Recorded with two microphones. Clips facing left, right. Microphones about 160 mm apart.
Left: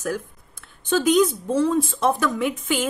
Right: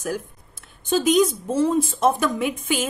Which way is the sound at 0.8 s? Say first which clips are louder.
Even; 20° right (ahead or behind).